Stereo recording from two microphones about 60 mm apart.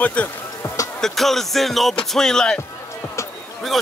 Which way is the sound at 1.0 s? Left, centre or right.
Centre.